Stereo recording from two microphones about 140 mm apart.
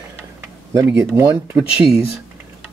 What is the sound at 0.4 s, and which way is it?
Tick-tock, 20° right (ahead or behind).